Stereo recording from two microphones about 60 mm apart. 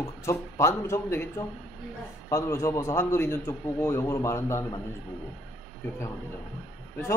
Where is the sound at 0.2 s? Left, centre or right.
Left.